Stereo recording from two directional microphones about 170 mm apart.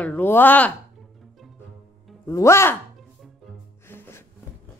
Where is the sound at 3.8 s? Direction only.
15° left (ahead or behind).